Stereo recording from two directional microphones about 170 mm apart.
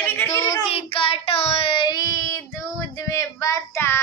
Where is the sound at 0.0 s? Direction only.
15° left (ahead or behind).